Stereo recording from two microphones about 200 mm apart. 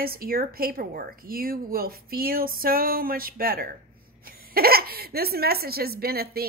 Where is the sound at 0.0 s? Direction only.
45° right (ahead or behind).